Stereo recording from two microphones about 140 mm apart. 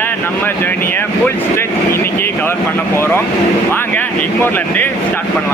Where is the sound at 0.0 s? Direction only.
15° left (ahead or behind).